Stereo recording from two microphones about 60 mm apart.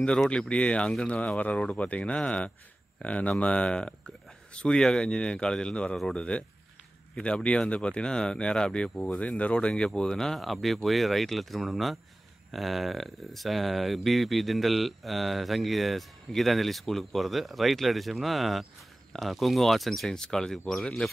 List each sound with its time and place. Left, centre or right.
0.3 s speech: centre